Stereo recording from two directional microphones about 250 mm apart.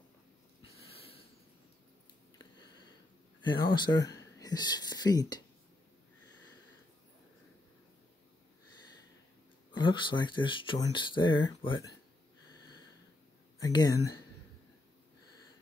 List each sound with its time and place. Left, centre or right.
3.6 s speech: centre
9.7 s speech: centre
13.6 s speech: centre